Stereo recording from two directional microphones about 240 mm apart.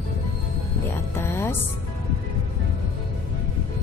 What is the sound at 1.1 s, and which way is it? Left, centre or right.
Music, centre.